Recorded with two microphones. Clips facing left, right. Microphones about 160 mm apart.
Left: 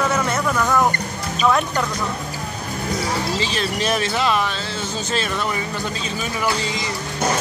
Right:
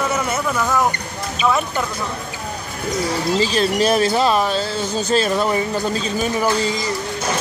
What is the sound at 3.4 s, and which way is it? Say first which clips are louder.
Speech: right 6 dB; 35° right (ahead or behind).